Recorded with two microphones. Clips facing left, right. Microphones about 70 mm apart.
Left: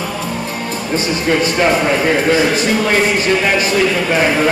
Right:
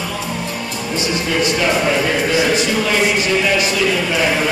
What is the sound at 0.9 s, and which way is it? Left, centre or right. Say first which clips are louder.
A man's voice: left 3 dB; left.